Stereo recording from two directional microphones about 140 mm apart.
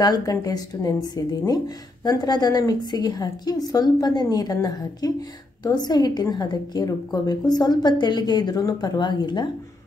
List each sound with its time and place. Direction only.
0.0 s a woman's voice: 25° left (ahead or behind)